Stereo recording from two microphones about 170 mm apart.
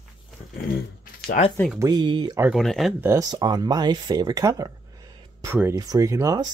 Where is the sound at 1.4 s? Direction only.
45° left (ahead or behind).